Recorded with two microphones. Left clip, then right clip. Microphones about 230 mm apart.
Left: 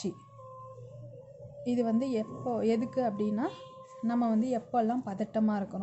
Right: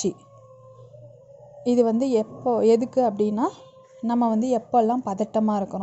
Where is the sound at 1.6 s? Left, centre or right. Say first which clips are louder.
Right 10 dB; right.